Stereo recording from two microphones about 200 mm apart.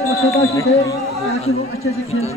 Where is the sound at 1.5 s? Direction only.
90° left.